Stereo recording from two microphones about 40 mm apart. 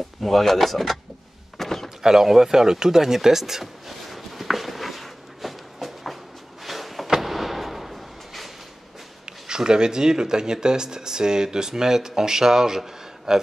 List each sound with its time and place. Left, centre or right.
0.2 s speech: centre
1.6 s door: centre
2.0 s a sound: centre
9.5 s speech: centre